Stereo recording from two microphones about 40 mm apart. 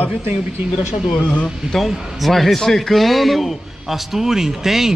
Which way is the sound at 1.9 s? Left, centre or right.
Centre.